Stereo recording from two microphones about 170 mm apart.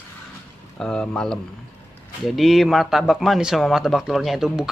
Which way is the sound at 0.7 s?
5° left (ahead or behind).